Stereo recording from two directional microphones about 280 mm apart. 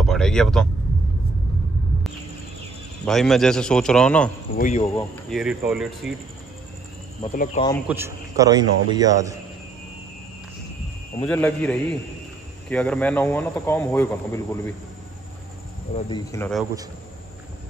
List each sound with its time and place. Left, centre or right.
0.0 s speech: centre
3.1 s a man's voice: centre
4.6 s speech: left
5.3 s a man's voice: centre
7.6 s speech: left
7.9 s a man's voice: centre
11.2 s a man's voice: centre
16.1 s speech: centre